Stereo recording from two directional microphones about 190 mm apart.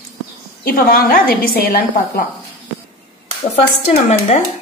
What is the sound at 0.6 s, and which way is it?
A woman's voice, 50° left (ahead or behind).